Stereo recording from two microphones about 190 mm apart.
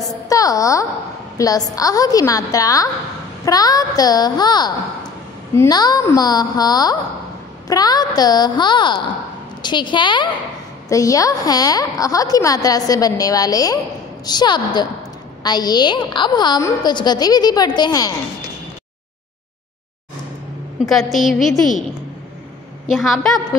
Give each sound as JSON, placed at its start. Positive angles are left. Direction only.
{"t": 0.0, "sound": "a sound", "side_deg": 20}
{"t": 1.4, "sound": "a woman's voice", "side_deg": 20}
{"t": 20.9, "sound": "a woman's voice", "side_deg": 0}
{"t": 22.8, "sound": "a woman's voice", "side_deg": 0}